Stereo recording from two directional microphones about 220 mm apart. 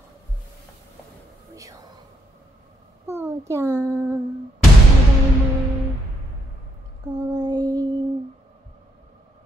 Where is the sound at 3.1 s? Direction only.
10° right (ahead or behind).